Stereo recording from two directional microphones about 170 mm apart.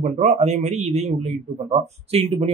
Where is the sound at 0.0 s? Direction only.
45° right (ahead or behind).